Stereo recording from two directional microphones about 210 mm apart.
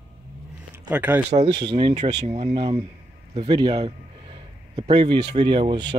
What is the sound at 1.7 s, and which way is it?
Speech, 25° right (ahead or behind).